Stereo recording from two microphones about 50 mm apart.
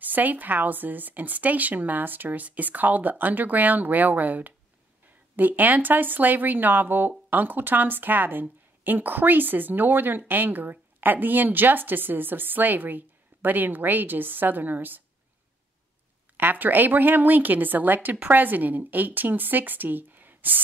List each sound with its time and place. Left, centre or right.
0.0 s speech: right
16.3 s speech: right